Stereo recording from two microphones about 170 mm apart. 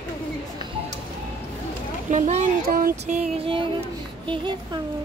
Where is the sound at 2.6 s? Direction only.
55° right (ahead or behind).